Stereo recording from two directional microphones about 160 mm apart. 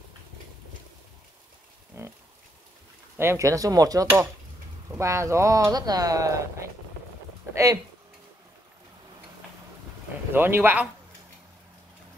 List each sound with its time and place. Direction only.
2.0 s pig: 15° right (ahead or behind)
3.2 s speech: 15° right (ahead or behind)
10.3 s speech: 15° right (ahead or behind)